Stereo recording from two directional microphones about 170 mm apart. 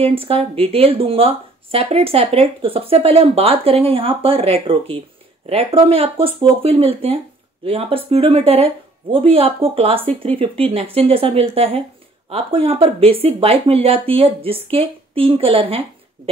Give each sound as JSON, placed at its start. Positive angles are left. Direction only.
{"t": 0.0, "sound": "speech", "side_deg": -35}